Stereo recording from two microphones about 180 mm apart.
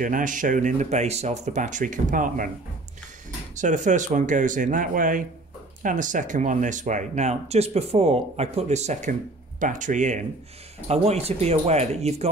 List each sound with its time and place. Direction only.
0.0 s speech: 45° right (ahead or behind)
3.5 s speech: 45° right (ahead or behind)